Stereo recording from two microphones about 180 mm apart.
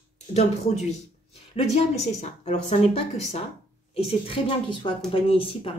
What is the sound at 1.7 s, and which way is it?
A woman's voice, 35° left (ahead or behind).